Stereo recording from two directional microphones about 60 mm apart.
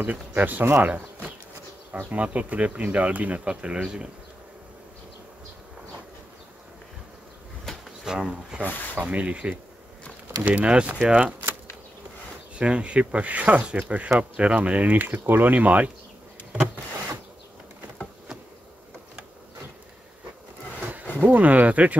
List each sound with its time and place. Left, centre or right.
0.0 s speech: right
8.0 s speech: centre
12.5 s speech: centre
20.8 s a sound: right
21.2 s speech: right